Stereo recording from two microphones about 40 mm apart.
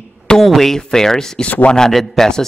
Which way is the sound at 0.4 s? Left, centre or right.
Centre.